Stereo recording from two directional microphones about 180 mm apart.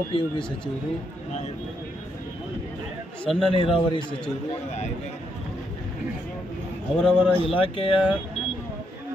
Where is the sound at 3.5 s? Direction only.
30° left (ahead or behind).